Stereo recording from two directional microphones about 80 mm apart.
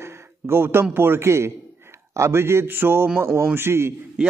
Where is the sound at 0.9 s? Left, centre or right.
Right.